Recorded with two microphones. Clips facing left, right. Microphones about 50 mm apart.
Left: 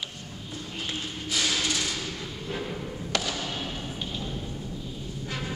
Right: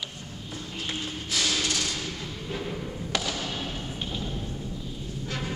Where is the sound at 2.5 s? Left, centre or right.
Centre.